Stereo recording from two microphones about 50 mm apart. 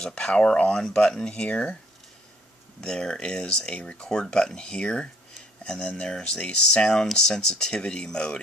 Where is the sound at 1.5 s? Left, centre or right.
Left.